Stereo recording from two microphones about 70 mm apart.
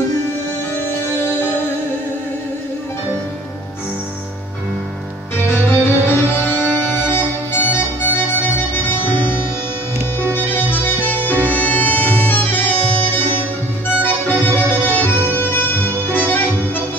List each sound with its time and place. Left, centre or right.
5.5 s music: left